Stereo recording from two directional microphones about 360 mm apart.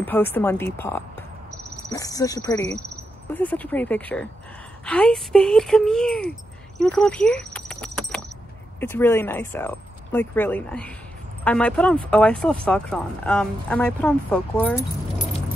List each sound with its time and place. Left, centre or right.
0.0 s a woman's voice: centre
6.8 s a sound: centre
8.7 s speech: centre